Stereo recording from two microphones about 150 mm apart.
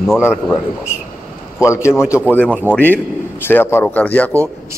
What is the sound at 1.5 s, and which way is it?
A man's voice, 20° left (ahead or behind).